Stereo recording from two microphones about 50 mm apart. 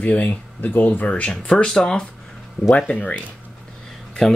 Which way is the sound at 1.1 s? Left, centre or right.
Centre.